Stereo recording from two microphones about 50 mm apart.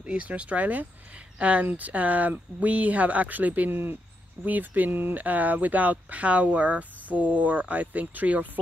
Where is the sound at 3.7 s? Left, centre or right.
Right.